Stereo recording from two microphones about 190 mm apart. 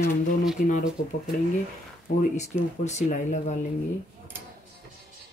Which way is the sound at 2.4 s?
35° left (ahead or behind).